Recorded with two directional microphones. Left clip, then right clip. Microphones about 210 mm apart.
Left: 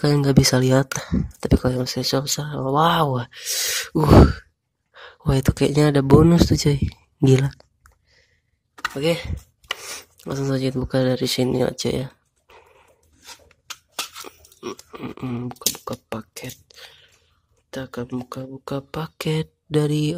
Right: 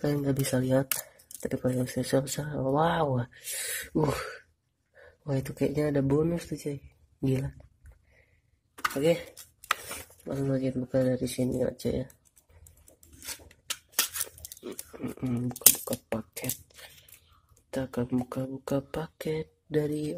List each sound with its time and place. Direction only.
0.0 s speech: 20° left (ahead or behind)
10.2 s speech: 20° left (ahead or behind)
14.9 s speech: 20° left (ahead or behind)
15.7 s a sound: 10° left (ahead or behind)
17.6 s speech: 5° left (ahead or behind)